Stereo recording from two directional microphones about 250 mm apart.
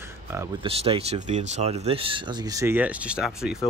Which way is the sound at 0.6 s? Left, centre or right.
Right.